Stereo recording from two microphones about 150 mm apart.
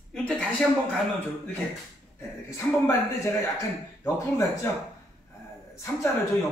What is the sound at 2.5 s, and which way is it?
A man's voice, 20° left (ahead or behind).